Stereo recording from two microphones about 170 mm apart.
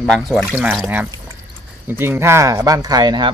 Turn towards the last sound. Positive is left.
turn(degrees=-25)  # may be behind; listen again after turning